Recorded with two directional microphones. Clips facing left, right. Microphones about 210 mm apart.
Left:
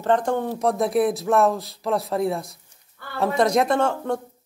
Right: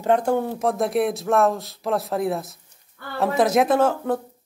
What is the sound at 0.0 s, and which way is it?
Speech, 10° right (ahead or behind).